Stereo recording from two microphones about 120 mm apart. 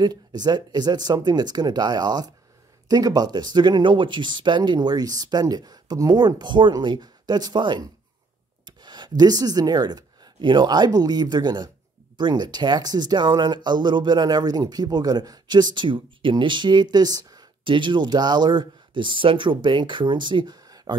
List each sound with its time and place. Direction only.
0.0 s speech: 35° right (ahead or behind)